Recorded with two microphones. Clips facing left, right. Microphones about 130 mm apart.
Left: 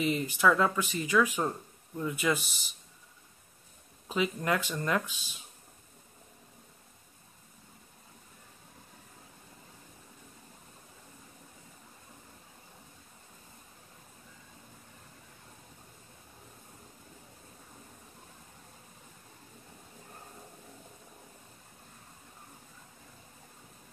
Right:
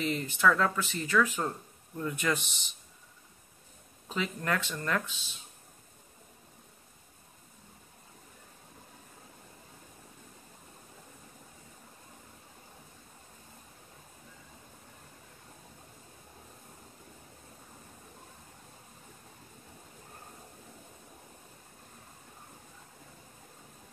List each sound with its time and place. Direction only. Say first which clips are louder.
0.0 s speech: left 1 dB; 10° left (ahead or behind)
4.1 s speech: left 3 dB; 10° left (ahead or behind)